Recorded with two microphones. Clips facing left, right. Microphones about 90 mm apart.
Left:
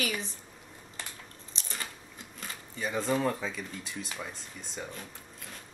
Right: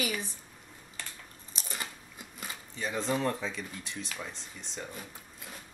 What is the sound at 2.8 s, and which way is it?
Speech, centre (ahead or behind).